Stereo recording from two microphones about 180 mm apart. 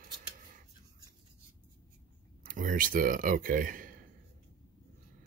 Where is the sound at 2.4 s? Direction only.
50° right (ahead or behind).